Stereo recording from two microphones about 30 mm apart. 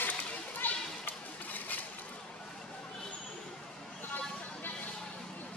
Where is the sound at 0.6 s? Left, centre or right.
Left.